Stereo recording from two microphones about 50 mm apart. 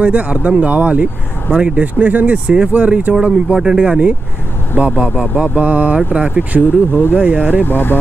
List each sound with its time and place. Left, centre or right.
0.0 s speech: right
7.6 s speech: left